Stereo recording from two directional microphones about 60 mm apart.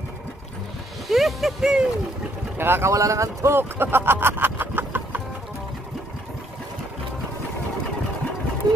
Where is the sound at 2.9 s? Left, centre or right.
Right.